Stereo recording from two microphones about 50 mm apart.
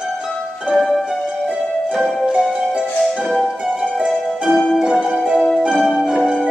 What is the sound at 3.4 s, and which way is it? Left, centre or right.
Music, centre.